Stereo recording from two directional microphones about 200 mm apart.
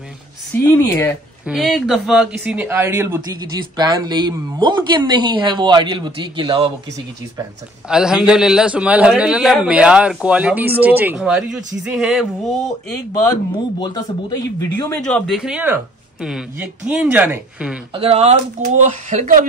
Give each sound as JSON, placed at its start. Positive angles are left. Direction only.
{"t": 0.7, "sound": "speech", "side_deg": 15}
{"t": 1.4, "sound": "speech", "side_deg": 0}
{"t": 7.9, "sound": "a man's voice", "side_deg": -5}
{"t": 13.7, "sound": "speech", "side_deg": 20}
{"t": 15.0, "sound": "a man's voice", "side_deg": 5}
{"t": 17.9, "sound": "speech", "side_deg": -30}